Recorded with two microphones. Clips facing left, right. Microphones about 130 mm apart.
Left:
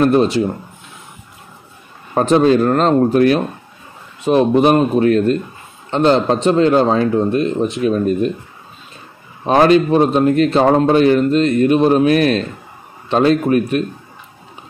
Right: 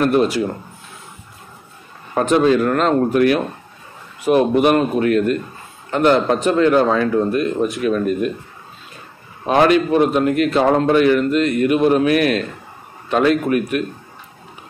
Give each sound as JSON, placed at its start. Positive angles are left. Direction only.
{"t": 0.0, "sound": "a man's voice", "side_deg": 30}
{"t": 2.1, "sound": "a man's voice", "side_deg": 30}
{"t": 9.5, "sound": "a man's voice", "side_deg": 30}